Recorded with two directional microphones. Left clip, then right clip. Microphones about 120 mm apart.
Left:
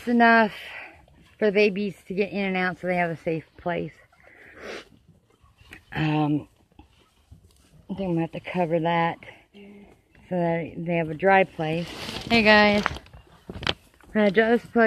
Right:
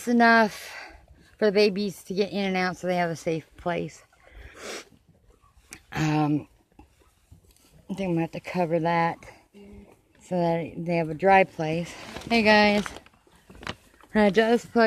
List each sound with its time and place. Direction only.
0.0 s speech: 20° right (ahead or behind)
7.9 s speech: 25° right (ahead or behind)
10.2 s speech: 30° right (ahead or behind)
14.1 s speech: 30° right (ahead or behind)